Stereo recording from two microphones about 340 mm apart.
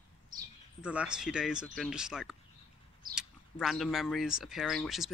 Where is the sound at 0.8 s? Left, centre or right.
Centre.